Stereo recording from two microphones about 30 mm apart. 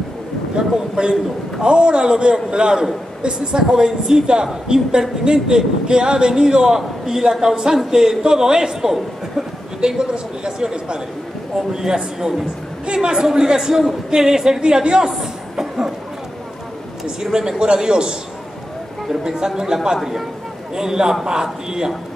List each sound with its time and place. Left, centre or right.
0.6 s a man's voice: right
9.8 s a man's voice: right
14.6 s a woman's voice: right; by 15.9 s centre
17.0 s a man's voice: right
19.2 s a man's voice: centre